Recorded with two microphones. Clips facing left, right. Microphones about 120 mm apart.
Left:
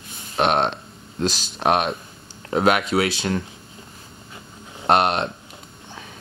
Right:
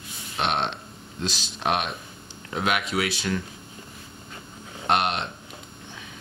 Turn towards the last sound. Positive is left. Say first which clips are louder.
# left 6 dB
turn(degrees=40)  # may be behind; listen again after turning